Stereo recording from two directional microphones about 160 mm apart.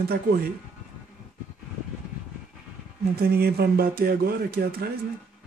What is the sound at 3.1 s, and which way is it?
Speech, 75° right (ahead or behind).